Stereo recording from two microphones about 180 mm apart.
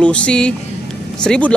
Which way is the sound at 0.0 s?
5° left (ahead or behind).